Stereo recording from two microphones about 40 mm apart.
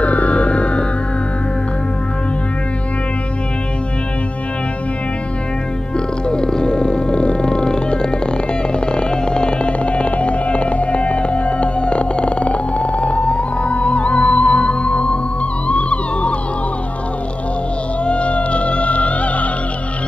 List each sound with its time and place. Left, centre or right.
0.0 s music: left
6.2 s music: centre
18.0 s music: left